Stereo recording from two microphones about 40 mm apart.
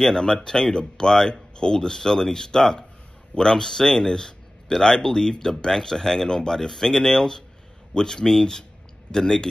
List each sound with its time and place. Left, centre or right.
0.0 s a man's voice: centre